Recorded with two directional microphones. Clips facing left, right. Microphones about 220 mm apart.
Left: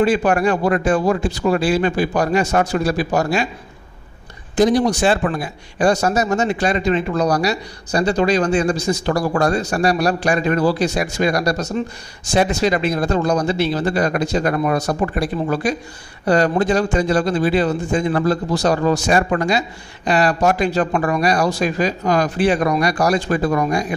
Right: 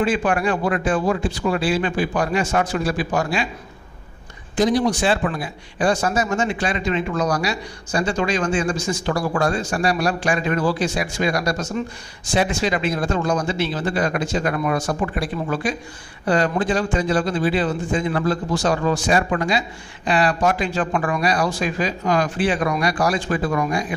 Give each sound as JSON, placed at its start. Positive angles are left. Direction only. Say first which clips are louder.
{"t": 0.0, "sound": "speech", "louder": "left 4 dB", "side_deg": 40}
{"t": 4.6, "sound": "speech", "louder": "left 3 dB", "side_deg": 45}